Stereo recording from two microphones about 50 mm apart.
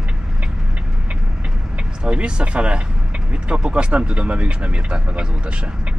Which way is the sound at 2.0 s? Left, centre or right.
Right.